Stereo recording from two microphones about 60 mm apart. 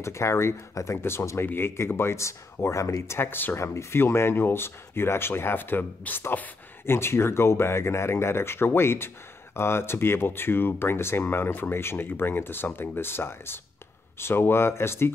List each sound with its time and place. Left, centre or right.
0.0 s speech: left
3.2 s speech: left
3.5 s speech: left
6.9 s speech: left